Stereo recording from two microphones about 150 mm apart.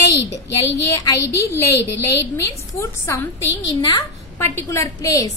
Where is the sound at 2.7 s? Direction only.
20° left (ahead or behind).